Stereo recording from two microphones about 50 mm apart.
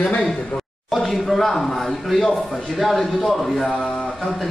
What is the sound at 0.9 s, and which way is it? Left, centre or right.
A man's voice, centre.